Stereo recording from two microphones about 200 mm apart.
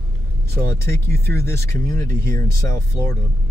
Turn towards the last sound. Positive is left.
turn(degrees=15)  # may be behind; listen again after turning